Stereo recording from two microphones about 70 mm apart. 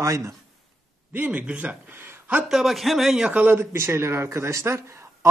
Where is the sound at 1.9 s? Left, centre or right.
Right.